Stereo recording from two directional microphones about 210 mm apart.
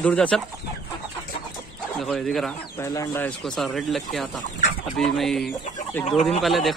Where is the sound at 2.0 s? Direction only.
Centre (ahead or behind).